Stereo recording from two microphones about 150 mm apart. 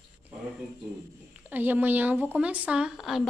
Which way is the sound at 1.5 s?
10° right (ahead or behind).